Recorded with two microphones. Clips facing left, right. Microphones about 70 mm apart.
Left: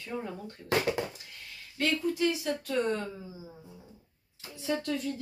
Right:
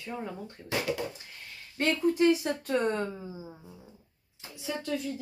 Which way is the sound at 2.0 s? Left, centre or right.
Right.